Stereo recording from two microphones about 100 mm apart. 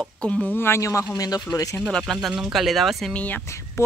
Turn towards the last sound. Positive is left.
turn(degrees=15)  # may be behind; listen again after turning